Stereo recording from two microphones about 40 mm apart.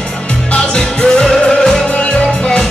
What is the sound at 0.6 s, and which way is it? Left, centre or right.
Music, centre.